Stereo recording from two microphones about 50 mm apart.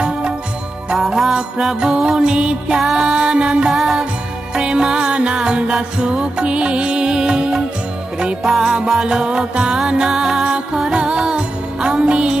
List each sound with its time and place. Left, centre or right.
0.9 s music: centre; by 2.8 s right
2.8 s music: centre
3.1 s music: centre
3.7 s music: centre